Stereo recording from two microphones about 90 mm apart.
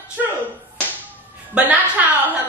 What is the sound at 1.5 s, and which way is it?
Speech, 15° right (ahead or behind).